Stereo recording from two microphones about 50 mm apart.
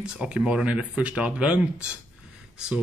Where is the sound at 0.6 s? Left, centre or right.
Right.